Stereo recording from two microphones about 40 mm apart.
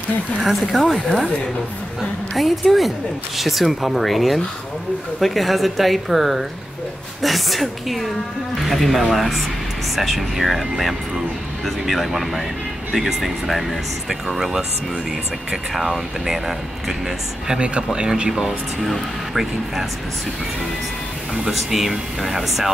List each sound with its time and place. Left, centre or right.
0.4 s speech: centre
2.3 s speech: centre
15.7 s speech: centre
17.9 s speech: right
18.3 s speech: centre
21.5 s speech: centre